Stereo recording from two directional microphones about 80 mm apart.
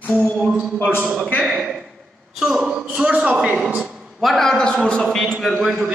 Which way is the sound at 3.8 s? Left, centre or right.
Centre.